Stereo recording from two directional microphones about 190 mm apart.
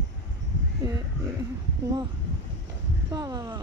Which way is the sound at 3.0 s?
20° right (ahead or behind).